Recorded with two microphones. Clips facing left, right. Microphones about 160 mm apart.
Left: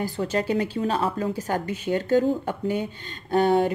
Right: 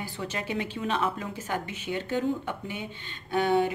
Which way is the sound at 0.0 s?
40° left (ahead or behind).